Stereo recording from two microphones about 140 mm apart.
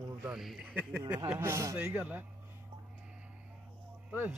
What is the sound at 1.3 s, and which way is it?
Speech, 20° right (ahead or behind).